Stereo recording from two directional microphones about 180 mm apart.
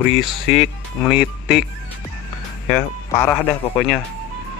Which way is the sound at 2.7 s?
10° left (ahead or behind).